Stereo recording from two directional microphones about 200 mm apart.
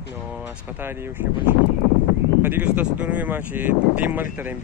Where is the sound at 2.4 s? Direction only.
5° right (ahead or behind).